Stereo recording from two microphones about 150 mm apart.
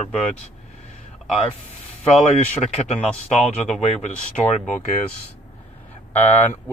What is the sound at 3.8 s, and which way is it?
Speech, 45° left (ahead or behind).